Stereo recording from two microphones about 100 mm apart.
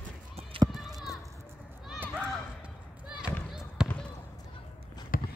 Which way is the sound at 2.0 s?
15° right (ahead or behind).